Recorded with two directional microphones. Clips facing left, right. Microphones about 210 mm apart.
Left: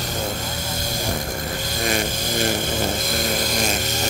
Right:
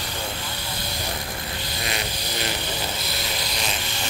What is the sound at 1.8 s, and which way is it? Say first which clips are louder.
Music: left 8 dB; 45° left (ahead or behind).